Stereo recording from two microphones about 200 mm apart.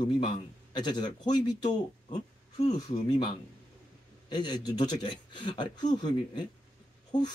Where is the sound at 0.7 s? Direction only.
20° left (ahead or behind).